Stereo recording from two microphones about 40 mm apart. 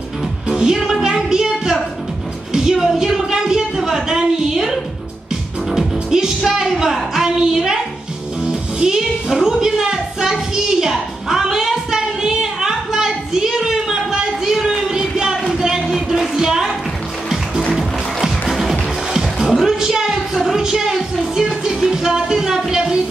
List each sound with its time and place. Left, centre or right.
0.5 s music: centre
2.5 s a sound: centre
5.7 s music: centre
7.2 s a woman's voice: centre
8.7 s a sound: centre
15.6 s music: centre
18.5 s music: centre
19.6 s a sound: centre
20.5 s a woman's voice: centre